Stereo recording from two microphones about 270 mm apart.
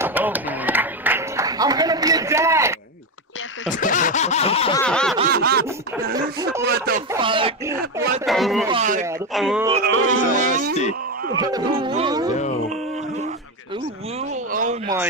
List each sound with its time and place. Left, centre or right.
0.0 s a sound: centre
3.8 s snicker: left
4.8 s snicker: centre
5.2 s snicker: right
6.2 s speech: right
7.2 s speech: centre
8.3 s speech: centre
8.6 s speech: right
9.3 s speech: centre
10.0 s speech: right
10.7 s speech: left
11.3 s speech: centre
14.5 s a sound: right